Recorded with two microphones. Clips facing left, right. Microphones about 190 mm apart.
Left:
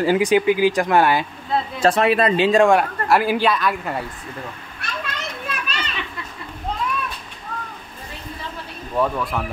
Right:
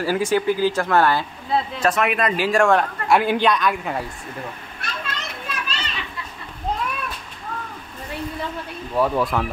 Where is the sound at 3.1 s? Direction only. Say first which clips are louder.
Even; 5° left (ahead or behind).